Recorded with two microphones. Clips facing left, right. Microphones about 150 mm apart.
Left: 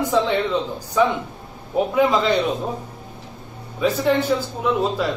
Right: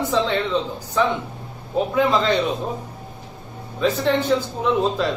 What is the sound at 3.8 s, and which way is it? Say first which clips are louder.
A man's voice: left 1 dB; 10° left (ahead or behind).